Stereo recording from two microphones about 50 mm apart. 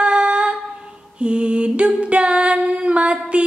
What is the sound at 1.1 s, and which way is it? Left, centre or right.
Mantra, right.